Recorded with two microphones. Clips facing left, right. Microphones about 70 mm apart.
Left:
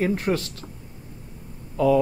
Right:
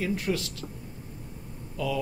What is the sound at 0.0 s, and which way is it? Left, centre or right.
Speech, left.